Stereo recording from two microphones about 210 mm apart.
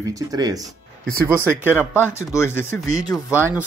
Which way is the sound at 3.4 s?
10° right (ahead or behind).